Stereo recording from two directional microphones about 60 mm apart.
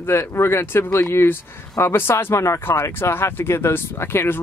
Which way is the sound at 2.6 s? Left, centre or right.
Left.